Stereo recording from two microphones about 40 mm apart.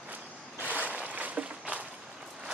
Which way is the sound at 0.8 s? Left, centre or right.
Right.